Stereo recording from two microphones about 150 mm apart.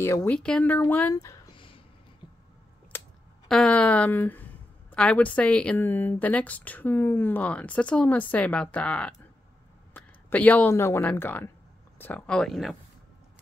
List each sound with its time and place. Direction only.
0.0 s a woman's voice: 15° left (ahead or behind)
2.9 s a sound: 15° left (ahead or behind)
3.4 s a woman's voice: 5° left (ahead or behind)